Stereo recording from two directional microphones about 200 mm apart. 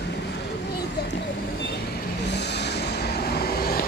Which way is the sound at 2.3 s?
55° left (ahead or behind).